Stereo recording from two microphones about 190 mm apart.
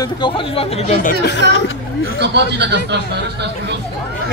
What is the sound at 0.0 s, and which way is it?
Speech, 25° left (ahead or behind).